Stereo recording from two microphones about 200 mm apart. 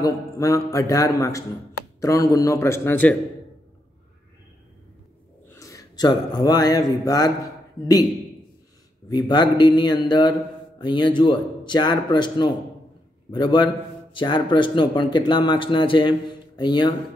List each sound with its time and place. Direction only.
0.0 s a man's voice: 15° left (ahead or behind)
5.5 s speech: 15° left (ahead or behind)
9.1 s speech: 20° left (ahead or behind)